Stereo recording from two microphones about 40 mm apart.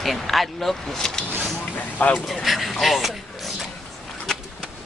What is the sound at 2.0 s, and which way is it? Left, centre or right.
Speech, left.